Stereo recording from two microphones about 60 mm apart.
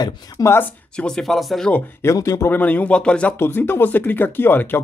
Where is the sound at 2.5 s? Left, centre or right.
Left.